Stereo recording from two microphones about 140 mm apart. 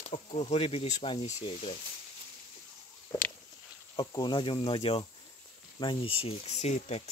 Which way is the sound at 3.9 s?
30° left (ahead or behind).